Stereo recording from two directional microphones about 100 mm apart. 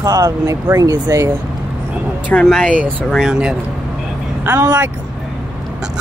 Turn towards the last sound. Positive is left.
turn(degrees=-20)  # may be behind; listen again after turning